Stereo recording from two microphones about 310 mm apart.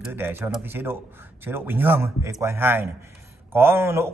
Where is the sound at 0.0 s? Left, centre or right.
Centre.